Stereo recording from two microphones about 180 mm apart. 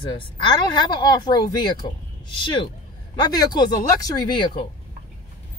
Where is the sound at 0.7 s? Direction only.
25° left (ahead or behind).